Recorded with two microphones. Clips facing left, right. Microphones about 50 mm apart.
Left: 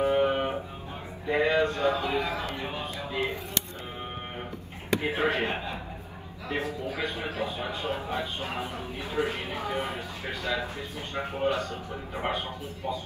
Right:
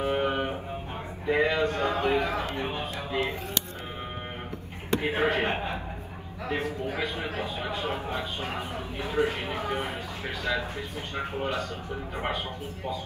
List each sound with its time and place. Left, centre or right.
0.0 s guitar: right
1.3 s a sound: right
5.0 s speech: right
11.3 s a man's voice: left